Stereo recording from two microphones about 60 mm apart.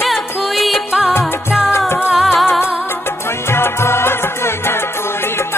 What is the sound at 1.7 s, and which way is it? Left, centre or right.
Music, left.